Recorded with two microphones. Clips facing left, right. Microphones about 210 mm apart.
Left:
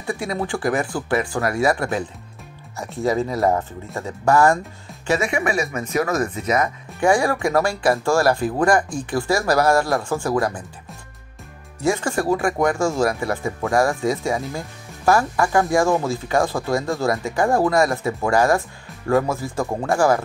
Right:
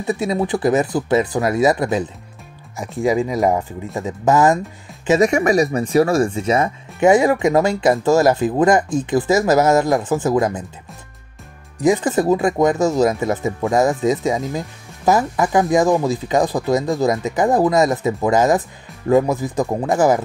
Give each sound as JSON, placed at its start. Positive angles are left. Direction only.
{"t": 0.0, "sound": "speech", "side_deg": -20}
{"t": 5.2, "sound": "speech", "side_deg": -40}
{"t": 11.8, "sound": "speech", "side_deg": -20}